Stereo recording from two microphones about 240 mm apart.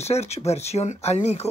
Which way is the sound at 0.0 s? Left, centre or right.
Left.